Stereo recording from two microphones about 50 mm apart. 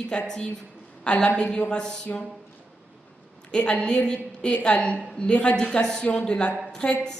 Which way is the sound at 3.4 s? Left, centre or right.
Left.